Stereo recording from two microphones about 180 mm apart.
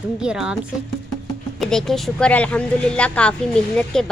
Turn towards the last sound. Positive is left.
turn(degrees=5)  # may be behind; listen again after turning